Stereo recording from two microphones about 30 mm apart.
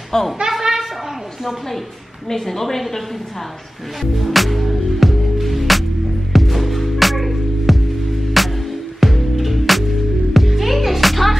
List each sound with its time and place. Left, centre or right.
0.1 s a woman's voice: left
0.5 s a sound: centre
2.2 s a woman's voice: centre
4.0 s music: centre